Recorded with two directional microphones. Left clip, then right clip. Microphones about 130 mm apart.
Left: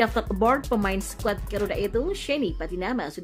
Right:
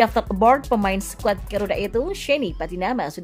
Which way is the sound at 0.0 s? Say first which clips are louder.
Right 6 dB; 25° right (ahead or behind).